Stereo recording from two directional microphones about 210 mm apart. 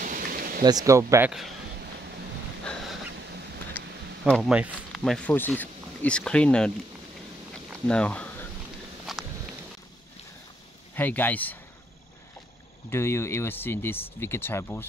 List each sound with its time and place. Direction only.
0.0 s rain: 40° right (ahead or behind)
0.7 s speech: 15° right (ahead or behind)
2.6 s a sound: 5° left (ahead or behind)
4.2 s speech: centre (ahead or behind)
7.7 s speech: 5° left (ahead or behind)
9.1 s walk: centre (ahead or behind)
11.0 s speech: 10° left (ahead or behind)
12.9 s speech: 10° left (ahead or behind)